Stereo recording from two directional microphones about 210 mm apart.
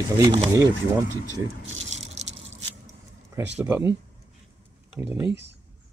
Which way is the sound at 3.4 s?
10° right (ahead or behind).